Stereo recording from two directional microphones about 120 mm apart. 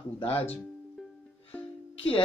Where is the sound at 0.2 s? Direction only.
55° left (ahead or behind).